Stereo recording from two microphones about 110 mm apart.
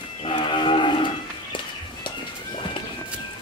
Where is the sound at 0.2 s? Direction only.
50° left (ahead or behind).